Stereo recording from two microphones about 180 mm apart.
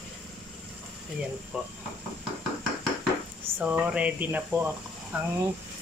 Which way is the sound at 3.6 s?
10° right (ahead or behind).